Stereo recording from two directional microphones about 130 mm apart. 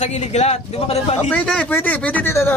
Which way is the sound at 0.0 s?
60° left (ahead or behind).